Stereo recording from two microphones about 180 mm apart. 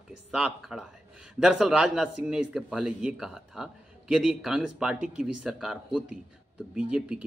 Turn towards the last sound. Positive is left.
turn(degrees=-5)  # may be behind; listen again after turning